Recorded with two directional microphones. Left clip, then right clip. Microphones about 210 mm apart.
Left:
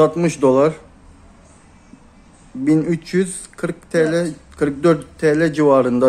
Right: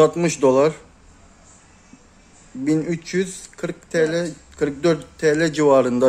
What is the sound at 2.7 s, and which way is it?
Speech, centre (ahead or behind).